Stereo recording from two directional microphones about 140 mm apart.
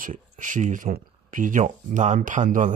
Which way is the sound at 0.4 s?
65° right (ahead or behind).